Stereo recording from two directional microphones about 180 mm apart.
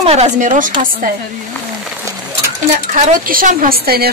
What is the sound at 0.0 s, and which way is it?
Speech, 35° right (ahead or behind).